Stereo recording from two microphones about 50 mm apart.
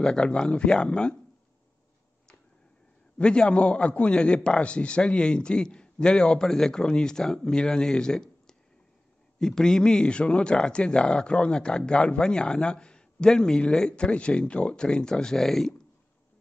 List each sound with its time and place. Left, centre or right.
0.0 s speech: centre
3.2 s a man's voice: left